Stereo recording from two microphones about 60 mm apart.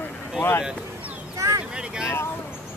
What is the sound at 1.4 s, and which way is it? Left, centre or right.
Vehicle, right.